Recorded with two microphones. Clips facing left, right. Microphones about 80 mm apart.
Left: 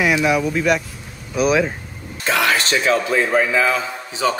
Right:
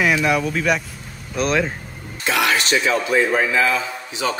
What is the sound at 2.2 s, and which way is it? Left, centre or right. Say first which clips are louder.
A man's voice: left 1 dB; left.